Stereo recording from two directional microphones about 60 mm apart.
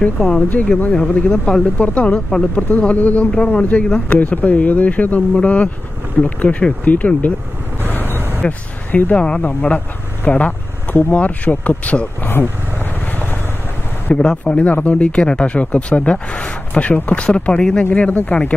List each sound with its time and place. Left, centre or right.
0.5 s speech: left
7.9 s vehicle: left
8.4 s speech: left
10.2 s vehicle: left
11.1 s speech: left
14.1 s speech: centre
18.1 s speech: left